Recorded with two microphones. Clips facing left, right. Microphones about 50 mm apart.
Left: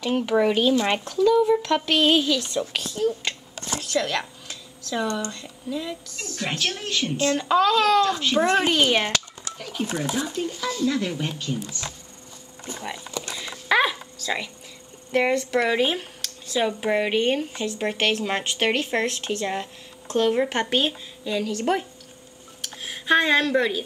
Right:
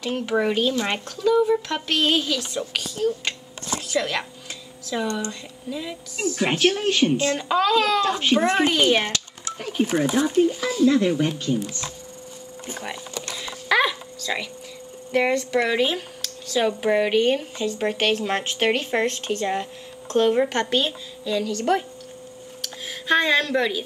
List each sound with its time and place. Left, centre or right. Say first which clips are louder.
0.0 s a woman's voice: left 3 dB; centre
0.3 s a woman's voice: left 2 dB; centre
6.8 s a child's voice: right 7 dB; right
7.2 s speech: left 1 dB; centre
8.0 s a child's voice: right 1 dB; right
8.4 s speech: left 2 dB; centre
9.6 s speech: right 6 dB; right
10.4 s a child's voice: right 6 dB; centre
12.8 s speech: left 1 dB; centre
13.4 s a sound: even; centre
15.0 s speech: even; centre
20.5 s a woman's voice: right 1 dB; centre
22.6 s a sound: even; centre